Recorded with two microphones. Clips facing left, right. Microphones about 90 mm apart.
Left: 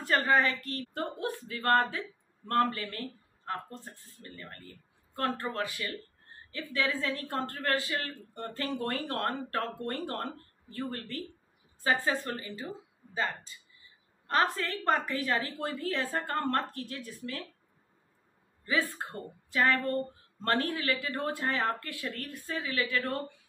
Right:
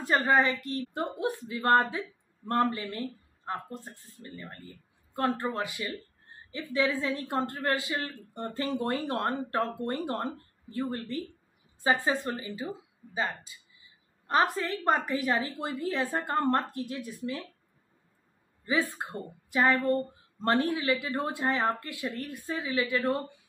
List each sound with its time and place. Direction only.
0.0 s a woman's voice: 20° right (ahead or behind)
18.7 s a woman's voice: 20° right (ahead or behind)